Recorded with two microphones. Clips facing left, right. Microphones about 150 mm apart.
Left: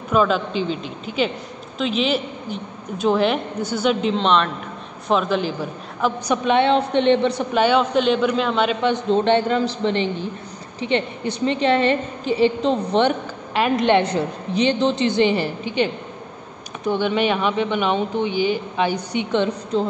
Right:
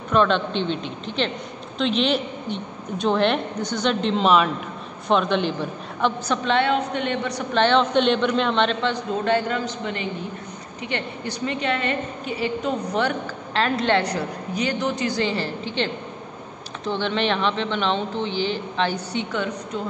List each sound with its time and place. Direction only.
0.1 s a woman's voice: 5° left (ahead or behind)
6.2 s speech: 15° left (ahead or behind)
6.7 s a woman's voice: 25° left (ahead or behind)
7.5 s a woman's voice: 10° left (ahead or behind)
8.8 s a woman's voice: 25° left (ahead or behind)
13.5 s a woman's voice: 15° left (ahead or behind)
19.3 s a woman's voice: 25° left (ahead or behind)